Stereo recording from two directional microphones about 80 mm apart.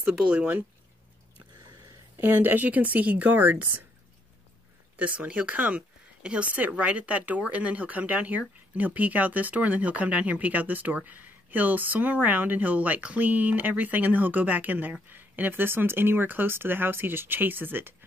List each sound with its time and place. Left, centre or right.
0.0 s speech: centre
2.1 s speech: right
4.9 s speech: centre